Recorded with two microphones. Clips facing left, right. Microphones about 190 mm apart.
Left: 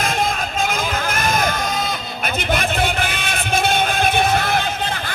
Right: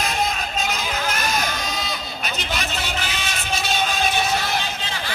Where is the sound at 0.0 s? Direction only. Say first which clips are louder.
Left 3 dB; 50° left (ahead or behind).